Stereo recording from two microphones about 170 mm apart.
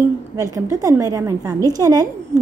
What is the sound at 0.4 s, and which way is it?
A woman's voice, 20° right (ahead or behind).